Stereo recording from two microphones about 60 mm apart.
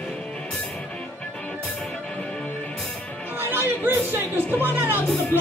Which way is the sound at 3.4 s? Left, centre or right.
Right.